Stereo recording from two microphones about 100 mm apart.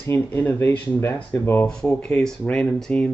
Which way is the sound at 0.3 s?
15° left (ahead or behind).